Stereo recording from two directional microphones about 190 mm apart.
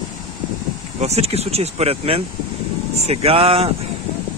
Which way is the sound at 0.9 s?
35° right (ahead or behind).